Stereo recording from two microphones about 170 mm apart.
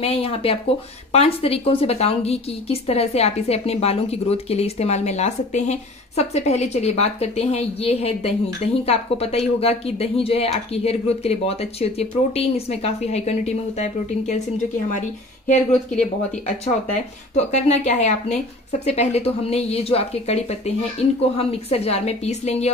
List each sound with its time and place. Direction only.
0.0 s a woman's voice: 35° left (ahead or behind)
15.4 s a woman's voice: 45° left (ahead or behind)